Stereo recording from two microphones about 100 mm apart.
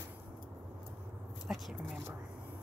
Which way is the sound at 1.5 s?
10° right (ahead or behind).